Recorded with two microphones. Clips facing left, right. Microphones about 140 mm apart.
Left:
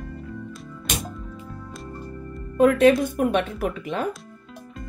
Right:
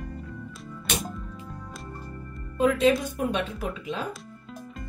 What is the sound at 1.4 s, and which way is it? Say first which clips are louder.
Music: left 3 dB; centre (ahead or behind).